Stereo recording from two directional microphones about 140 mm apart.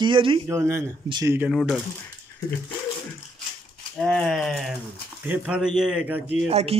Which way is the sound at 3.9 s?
5° left (ahead or behind).